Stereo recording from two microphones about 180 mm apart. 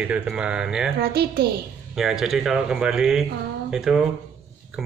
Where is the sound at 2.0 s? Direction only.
Centre (ahead or behind).